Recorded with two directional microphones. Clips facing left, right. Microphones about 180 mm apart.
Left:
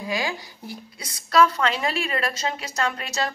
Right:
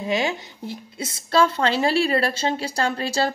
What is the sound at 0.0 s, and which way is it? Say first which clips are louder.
Speech: right 4 dB; 25° right (ahead or behind).